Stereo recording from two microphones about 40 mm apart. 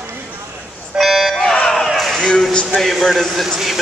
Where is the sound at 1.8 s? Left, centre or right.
Centre.